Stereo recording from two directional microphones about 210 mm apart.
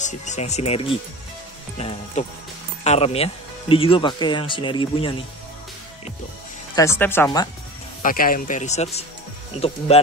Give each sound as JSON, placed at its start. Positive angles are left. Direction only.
{"t": 0.0, "sound": "a man's voice", "side_deg": 35}
{"t": 6.7, "sound": "speech", "side_deg": 15}
{"t": 8.0, "sound": "a man's voice", "side_deg": 40}